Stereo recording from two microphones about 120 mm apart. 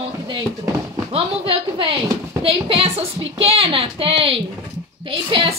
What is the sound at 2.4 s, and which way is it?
A woman's voice, 50° right (ahead or behind).